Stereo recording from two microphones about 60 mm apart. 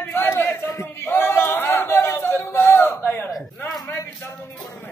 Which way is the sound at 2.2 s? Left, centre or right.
Left.